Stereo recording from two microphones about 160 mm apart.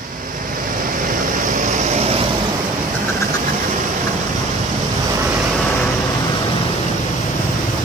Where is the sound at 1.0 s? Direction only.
55° right (ahead or behind).